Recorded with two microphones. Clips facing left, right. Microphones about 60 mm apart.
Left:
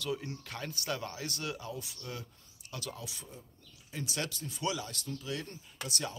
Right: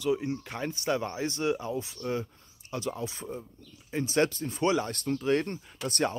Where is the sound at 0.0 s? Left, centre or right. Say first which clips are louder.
Right 9 dB; right.